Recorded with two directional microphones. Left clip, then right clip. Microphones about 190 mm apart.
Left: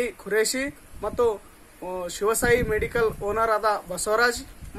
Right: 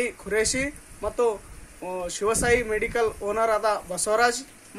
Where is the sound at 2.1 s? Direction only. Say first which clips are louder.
Left 1 dB; 10° right (ahead or behind).